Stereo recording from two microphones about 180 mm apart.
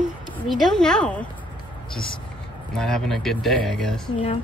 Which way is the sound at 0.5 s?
Centre (ahead or behind).